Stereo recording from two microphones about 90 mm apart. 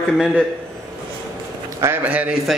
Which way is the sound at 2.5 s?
Centre (ahead or behind).